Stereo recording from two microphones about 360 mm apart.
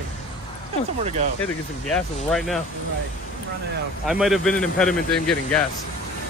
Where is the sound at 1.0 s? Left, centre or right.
Centre.